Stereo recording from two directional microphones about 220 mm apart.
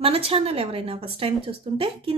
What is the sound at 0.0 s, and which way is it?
A woman's voice, 25° right (ahead or behind).